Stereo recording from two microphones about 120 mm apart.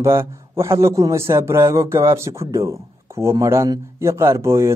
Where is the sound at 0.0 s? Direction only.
20° right (ahead or behind).